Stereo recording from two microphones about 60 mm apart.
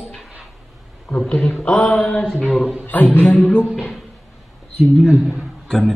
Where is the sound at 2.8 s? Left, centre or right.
Left.